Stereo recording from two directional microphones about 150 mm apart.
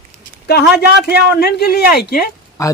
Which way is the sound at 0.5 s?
90° left.